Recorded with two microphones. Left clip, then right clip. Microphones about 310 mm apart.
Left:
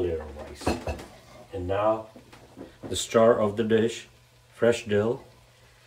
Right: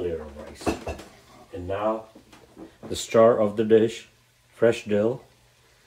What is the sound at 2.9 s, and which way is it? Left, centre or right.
Speech, centre.